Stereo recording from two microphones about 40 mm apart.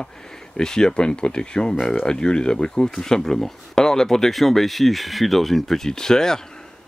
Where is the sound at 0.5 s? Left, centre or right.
Centre.